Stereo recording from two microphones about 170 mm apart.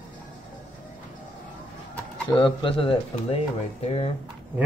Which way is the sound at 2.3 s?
30° left (ahead or behind).